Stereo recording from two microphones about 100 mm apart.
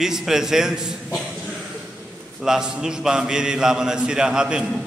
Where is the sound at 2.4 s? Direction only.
5° right (ahead or behind).